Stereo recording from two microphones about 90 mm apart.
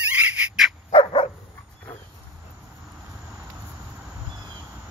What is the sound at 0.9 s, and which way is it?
Dog, 70° left (ahead or behind).